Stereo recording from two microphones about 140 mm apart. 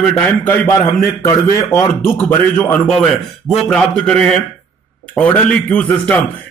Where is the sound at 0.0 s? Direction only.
10° left (ahead or behind).